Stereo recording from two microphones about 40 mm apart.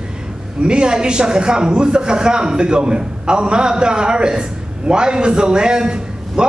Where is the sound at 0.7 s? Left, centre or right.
Right.